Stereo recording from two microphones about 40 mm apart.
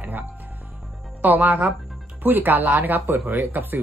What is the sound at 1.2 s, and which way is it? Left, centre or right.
Speech, right.